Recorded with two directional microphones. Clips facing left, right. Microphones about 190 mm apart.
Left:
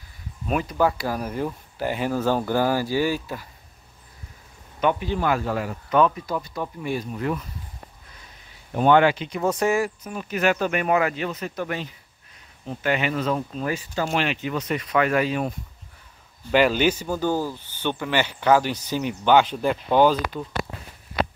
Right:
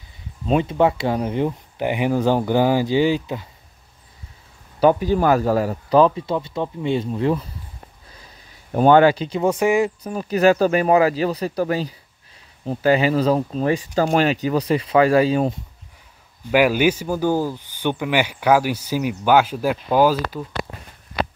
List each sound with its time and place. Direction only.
0.5 s speech: 25° right (ahead or behind)
4.7 s speech: 35° right (ahead or behind)
8.7 s speech: 40° right (ahead or behind)
9.4 s speech: 10° right (ahead or behind)
10.0 s speech: 35° right (ahead or behind)
16.4 s speech: 10° right (ahead or behind)